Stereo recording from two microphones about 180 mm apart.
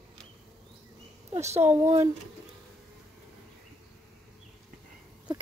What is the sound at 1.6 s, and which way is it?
Speech, 10° right (ahead or behind).